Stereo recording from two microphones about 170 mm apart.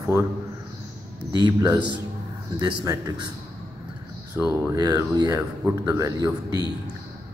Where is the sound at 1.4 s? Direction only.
25° right (ahead or behind).